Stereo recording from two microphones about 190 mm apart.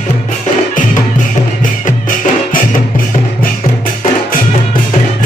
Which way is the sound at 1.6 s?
45° left (ahead or behind).